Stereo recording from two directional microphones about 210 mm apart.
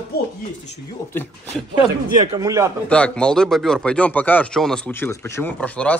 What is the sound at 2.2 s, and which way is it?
Speech, 15° right (ahead or behind).